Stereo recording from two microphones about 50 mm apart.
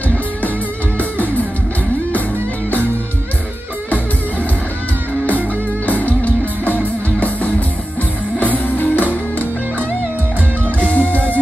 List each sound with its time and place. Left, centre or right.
0.9 s music: left
5.9 s music: left